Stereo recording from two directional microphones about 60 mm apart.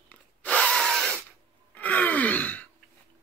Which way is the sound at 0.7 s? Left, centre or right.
Centre.